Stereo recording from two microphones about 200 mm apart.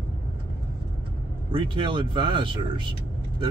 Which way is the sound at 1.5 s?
25° right (ahead or behind).